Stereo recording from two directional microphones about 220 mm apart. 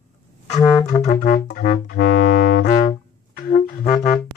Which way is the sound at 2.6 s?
35° left (ahead or behind).